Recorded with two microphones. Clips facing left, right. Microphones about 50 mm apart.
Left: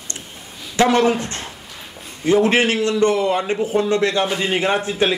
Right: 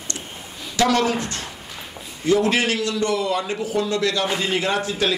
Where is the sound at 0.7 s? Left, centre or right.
Left.